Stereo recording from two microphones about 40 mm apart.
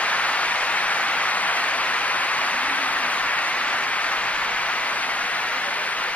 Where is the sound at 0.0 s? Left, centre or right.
Left.